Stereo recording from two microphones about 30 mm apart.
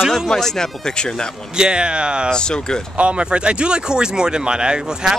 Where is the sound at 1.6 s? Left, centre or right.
Right.